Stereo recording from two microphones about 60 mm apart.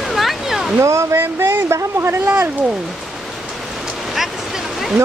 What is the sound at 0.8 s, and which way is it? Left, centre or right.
Speech, right.